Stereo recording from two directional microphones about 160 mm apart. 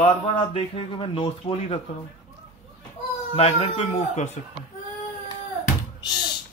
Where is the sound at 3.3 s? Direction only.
40° left (ahead or behind).